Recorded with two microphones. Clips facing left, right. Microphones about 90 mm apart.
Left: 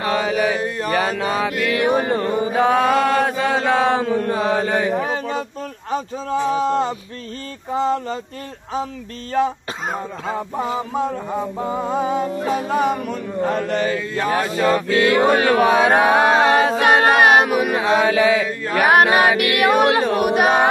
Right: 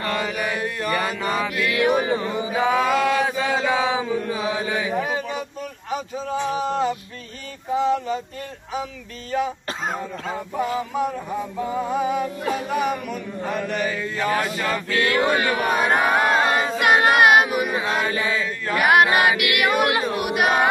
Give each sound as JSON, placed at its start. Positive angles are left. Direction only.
{"t": 0.0, "sound": "mantra", "side_deg": 40}
{"t": 1.7, "sound": "mantra", "side_deg": 30}
{"t": 2.0, "sound": "chant", "side_deg": 50}
{"t": 4.9, "sound": "a sound", "side_deg": 30}
{"t": 5.9, "sound": "speech", "side_deg": 35}
{"t": 6.5, "sound": "mantra", "side_deg": 35}
{"t": 10.3, "sound": "music", "side_deg": 25}
{"t": 15.2, "sound": "a sound", "side_deg": 65}
{"t": 16.8, "sound": "mantra", "side_deg": 35}
{"t": 17.5, "sound": "mantra", "side_deg": 50}
{"t": 17.7, "sound": "mantra", "side_deg": 90}
{"t": 19.1, "sound": "mantra", "side_deg": 35}
{"t": 20.0, "sound": "mantra", "side_deg": 45}